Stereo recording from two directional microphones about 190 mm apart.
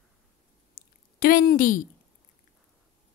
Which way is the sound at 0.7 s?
55° left (ahead or behind).